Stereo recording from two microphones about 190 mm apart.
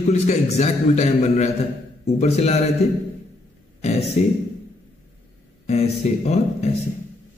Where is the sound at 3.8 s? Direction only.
35° left (ahead or behind).